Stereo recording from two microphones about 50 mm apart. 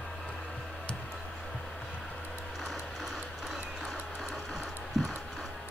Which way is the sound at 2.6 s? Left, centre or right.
Centre.